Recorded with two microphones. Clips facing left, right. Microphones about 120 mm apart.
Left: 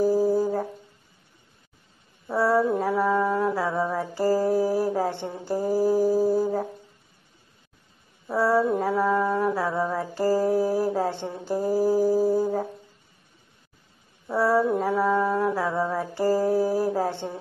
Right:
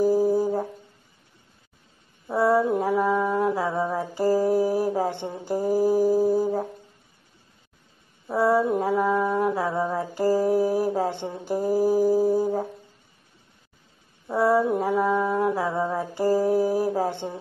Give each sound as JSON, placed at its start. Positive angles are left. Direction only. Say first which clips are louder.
{"t": 0.0, "sound": "a sound", "louder": "right 1 dB", "side_deg": -15}
{"t": 2.2, "sound": "mantra", "louder": "right 1 dB", "side_deg": -15}
{"t": 8.4, "sound": "mantra", "louder": "right 1 dB", "side_deg": -20}
{"t": 11.7, "sound": "music", "louder": "right 1 dB", "side_deg": -15}
{"t": 14.2, "sound": "mantra", "louder": "right 1 dB", "side_deg": -15}